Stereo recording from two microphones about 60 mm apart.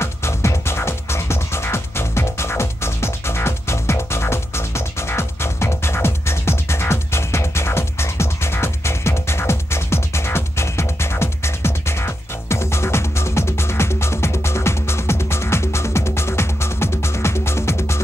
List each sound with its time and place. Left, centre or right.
0.0 s music: left